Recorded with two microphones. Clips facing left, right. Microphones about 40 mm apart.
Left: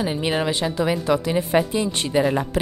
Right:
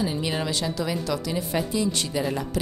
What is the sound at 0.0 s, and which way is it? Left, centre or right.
A woman's voice, left.